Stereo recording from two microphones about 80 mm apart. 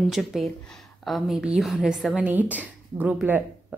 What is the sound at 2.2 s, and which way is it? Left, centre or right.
Speech, right.